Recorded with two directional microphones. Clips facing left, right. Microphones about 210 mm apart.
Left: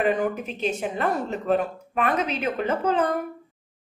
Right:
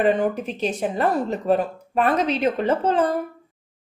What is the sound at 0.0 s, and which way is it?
Speech, 35° right (ahead or behind).